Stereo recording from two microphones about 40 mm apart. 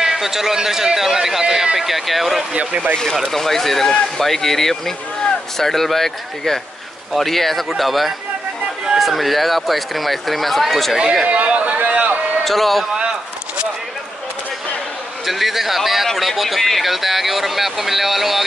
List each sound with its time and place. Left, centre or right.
0.0 s a man's voice: centre
2.5 s speech: right
3.3 s speech: centre
11.2 s speech: right
12.4 s speech: centre
15.2 s speech: centre